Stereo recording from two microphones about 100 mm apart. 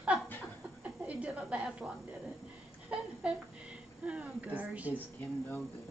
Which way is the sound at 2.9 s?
10° right (ahead or behind).